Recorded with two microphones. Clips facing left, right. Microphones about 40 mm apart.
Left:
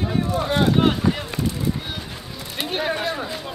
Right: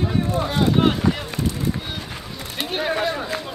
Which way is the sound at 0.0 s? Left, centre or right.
Centre.